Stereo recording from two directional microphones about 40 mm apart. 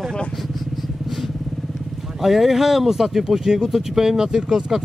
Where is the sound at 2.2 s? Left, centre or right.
Centre.